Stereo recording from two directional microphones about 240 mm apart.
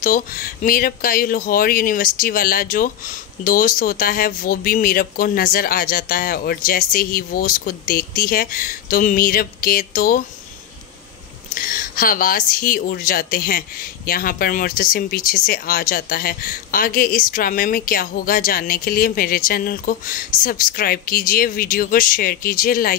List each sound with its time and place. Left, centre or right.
0.0 s speech: left
11.5 s speech: left